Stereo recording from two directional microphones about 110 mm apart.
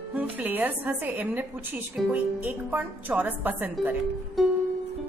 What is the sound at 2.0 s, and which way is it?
Speech, centre (ahead or behind).